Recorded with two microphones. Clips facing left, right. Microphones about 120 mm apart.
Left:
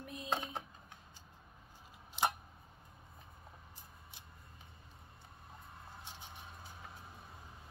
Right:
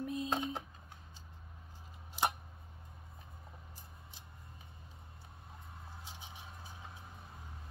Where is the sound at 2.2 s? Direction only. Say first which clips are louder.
Even; 5° right (ahead or behind).